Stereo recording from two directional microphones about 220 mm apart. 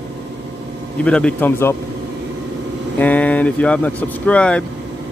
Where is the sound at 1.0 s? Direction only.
5° left (ahead or behind).